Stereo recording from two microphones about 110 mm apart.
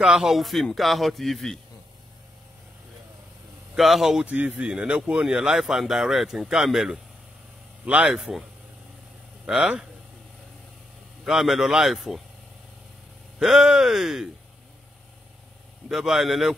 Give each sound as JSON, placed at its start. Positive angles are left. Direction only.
{"t": 0.0, "sound": "speech", "side_deg": -5}
{"t": 3.7, "sound": "speech", "side_deg": 0}
{"t": 9.5, "sound": "speech", "side_deg": -5}
{"t": 11.2, "sound": "speech", "side_deg": -5}
{"t": 13.4, "sound": "speech", "side_deg": -5}
{"t": 15.9, "sound": "speech", "side_deg": -5}